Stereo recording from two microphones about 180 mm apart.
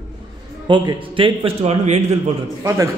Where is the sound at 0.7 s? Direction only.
25° right (ahead or behind).